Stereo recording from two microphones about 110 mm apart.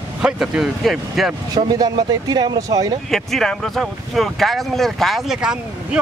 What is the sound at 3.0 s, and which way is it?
Speech, 5° left (ahead or behind).